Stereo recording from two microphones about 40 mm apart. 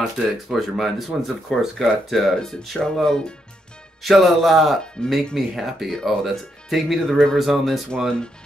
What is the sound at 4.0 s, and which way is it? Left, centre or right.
Speech, centre.